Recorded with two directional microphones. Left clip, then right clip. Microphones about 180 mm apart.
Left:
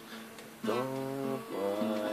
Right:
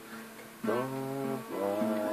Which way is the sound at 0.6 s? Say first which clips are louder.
Right 1 dB; 20° left (ahead or behind).